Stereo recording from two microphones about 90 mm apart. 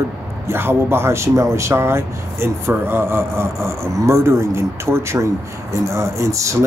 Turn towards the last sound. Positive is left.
turn(degrees=-35)  # may be behind; listen again after turning